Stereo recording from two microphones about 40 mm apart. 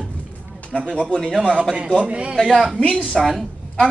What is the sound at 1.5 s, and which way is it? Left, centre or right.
Speech, centre.